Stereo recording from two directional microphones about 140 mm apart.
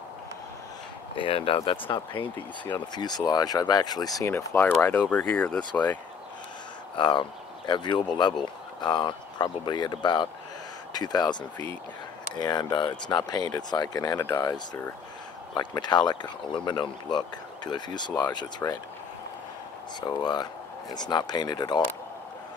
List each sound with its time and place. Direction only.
1.1 s speech: 40° left (ahead or behind); by 5.6 s 10° left (ahead or behind)
7.0 s speech: 35° left (ahead or behind)
12.4 s speech: 30° left (ahead or behind)
18.6 s speech: 20° left (ahead or behind)
20.0 s speech: 30° left (ahead or behind)